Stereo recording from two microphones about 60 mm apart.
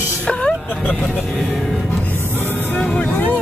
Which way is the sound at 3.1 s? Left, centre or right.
Left.